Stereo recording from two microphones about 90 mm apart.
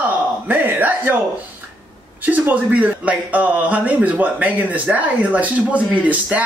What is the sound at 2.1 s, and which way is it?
A man's voice, 20° right (ahead or behind).